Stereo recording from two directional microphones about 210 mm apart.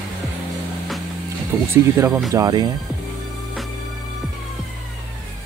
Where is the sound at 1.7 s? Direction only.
10° right (ahead or behind).